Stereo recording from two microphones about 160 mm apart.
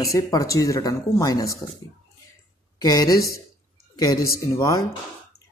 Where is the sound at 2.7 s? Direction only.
25° left (ahead or behind).